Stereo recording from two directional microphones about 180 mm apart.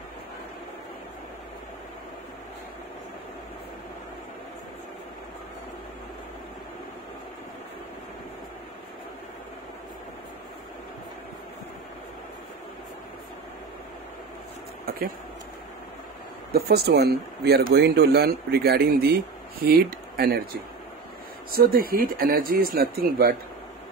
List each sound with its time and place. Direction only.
16.5 s speech: 60° right (ahead or behind)
21.5 s speech: 55° right (ahead or behind)